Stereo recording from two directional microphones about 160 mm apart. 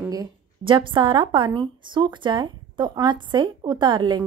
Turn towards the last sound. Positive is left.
turn(degrees=-30)  # may be behind; listen again after turning